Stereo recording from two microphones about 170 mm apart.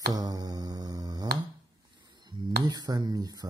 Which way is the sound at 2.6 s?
25° right (ahead or behind).